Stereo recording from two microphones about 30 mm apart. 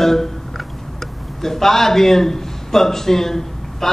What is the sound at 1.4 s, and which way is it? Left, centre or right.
A man's voice, centre.